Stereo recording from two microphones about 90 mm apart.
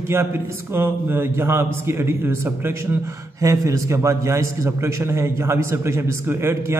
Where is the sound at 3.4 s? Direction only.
40° right (ahead or behind).